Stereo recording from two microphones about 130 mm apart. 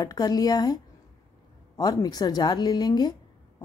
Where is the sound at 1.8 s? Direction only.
30° left (ahead or behind).